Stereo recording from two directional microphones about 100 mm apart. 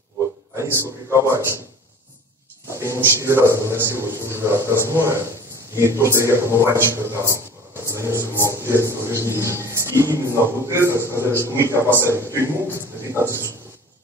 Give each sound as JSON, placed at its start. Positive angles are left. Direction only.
{"t": 0.6, "sound": "a man's voice", "side_deg": -30}
{"t": 2.7, "sound": "a man's voice", "side_deg": -30}